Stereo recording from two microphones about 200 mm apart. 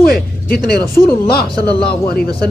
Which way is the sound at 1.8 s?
50° left (ahead or behind).